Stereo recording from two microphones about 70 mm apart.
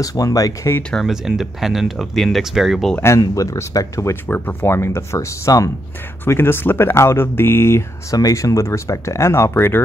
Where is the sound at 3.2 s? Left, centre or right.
Left.